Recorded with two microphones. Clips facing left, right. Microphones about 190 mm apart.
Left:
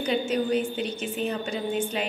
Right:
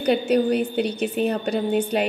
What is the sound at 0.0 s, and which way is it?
A woman's voice, 65° right (ahead or behind).